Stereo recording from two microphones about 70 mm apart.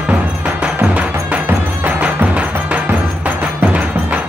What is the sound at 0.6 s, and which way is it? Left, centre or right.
Music, centre.